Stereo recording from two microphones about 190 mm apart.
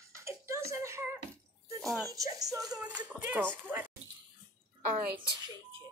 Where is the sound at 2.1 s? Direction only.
20° right (ahead or behind).